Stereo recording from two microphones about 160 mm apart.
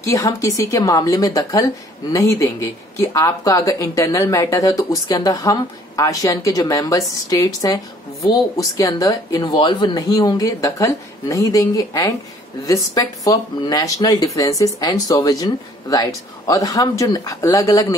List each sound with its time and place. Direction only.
0.0 s speech: 20° left (ahead or behind)